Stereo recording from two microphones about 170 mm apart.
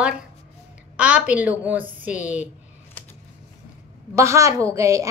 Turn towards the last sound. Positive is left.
turn(degrees=-20)  # may be behind; listen again after turning